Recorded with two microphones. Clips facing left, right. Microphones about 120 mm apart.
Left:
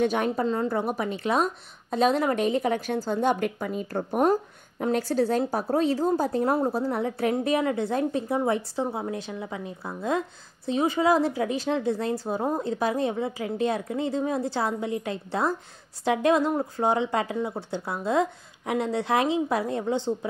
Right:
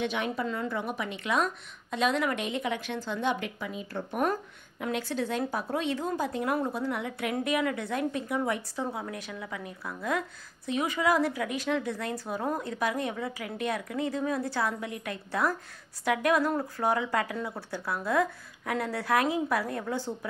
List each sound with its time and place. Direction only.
0.0 s a woman's voice: 40° left (ahead or behind)
4.2 s a woman's voice: 30° left (ahead or behind)